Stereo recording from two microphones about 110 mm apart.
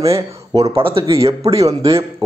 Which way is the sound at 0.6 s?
55° right (ahead or behind).